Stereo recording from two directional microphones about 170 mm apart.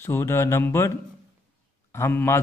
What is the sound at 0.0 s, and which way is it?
A man's voice, 15° left (ahead or behind).